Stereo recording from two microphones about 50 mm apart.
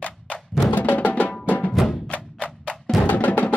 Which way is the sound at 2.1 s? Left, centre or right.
Left.